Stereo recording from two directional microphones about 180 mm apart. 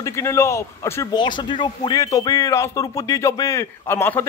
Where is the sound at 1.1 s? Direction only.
25° left (ahead or behind).